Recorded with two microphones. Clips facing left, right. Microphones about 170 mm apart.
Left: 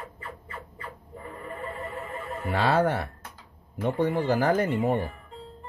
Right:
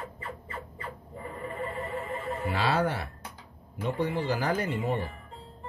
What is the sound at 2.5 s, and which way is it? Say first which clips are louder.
Speech: left 5 dB; 50° left (ahead or behind).